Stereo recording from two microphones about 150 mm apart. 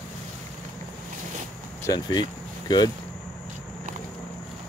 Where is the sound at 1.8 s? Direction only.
30° left (ahead or behind).